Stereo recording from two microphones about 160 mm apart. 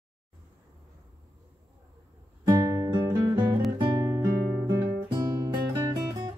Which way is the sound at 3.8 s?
25° right (ahead or behind).